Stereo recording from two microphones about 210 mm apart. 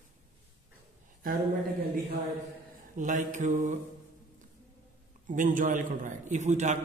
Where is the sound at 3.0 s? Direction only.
35° right (ahead or behind).